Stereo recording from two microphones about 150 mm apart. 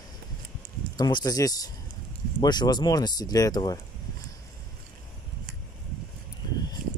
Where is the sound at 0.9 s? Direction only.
25° left (ahead or behind).